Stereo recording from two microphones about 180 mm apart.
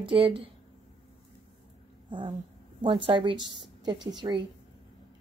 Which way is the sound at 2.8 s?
30° right (ahead or behind).